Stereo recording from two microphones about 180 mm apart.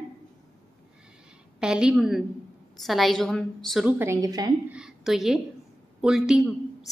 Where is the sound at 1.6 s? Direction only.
5° right (ahead or behind).